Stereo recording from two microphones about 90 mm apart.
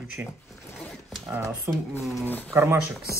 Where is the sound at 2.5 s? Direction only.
25° right (ahead or behind).